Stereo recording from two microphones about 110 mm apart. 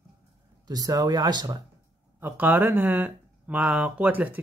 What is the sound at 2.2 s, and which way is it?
Speech, 15° right (ahead or behind).